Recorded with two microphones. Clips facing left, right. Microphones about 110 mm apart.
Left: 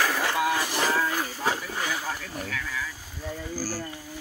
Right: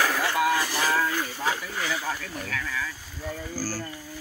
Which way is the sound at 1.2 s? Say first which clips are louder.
Even; 35° left (ahead or behind).